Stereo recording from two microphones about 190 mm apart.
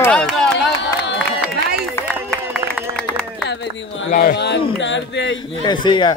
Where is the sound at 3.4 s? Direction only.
65° left (ahead or behind).